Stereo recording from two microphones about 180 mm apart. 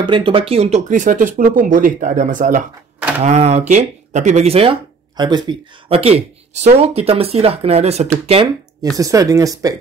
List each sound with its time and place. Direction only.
0.0 s speech: 25° right (ahead or behind)
8.9 s speech: 20° right (ahead or behind)